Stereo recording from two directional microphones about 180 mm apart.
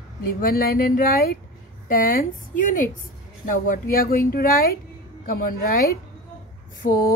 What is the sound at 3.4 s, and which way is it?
A woman's voice, 50° left (ahead or behind).